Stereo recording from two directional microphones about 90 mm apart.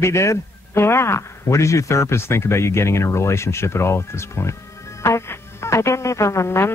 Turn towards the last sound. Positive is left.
turn(degrees=30)  # may be behind; listen again after turning